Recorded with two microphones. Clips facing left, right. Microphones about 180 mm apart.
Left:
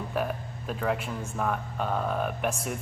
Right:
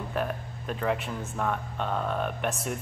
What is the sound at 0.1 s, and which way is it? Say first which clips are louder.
Speech: left 1 dB; centre (ahead or behind).